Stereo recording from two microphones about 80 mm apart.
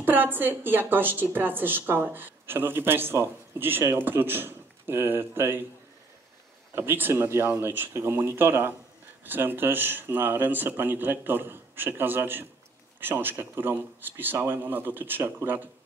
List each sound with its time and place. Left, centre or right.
0.0 s a woman's voice: right
6.7 s a woman's voice: right